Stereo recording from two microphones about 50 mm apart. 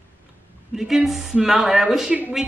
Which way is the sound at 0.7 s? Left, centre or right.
Centre.